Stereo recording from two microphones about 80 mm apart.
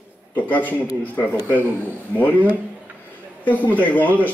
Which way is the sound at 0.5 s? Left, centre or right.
Left.